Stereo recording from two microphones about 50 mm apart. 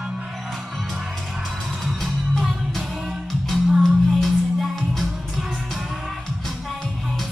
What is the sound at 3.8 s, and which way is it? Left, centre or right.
Music, centre.